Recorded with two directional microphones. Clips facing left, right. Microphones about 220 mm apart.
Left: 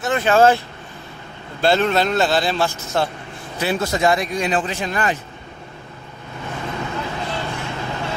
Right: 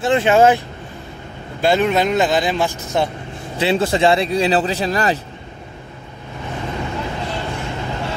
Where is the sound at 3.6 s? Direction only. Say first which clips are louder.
Right 4 dB; 25° right (ahead or behind).